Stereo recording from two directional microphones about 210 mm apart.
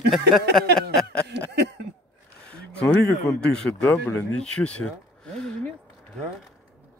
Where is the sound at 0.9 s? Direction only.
5° left (ahead or behind).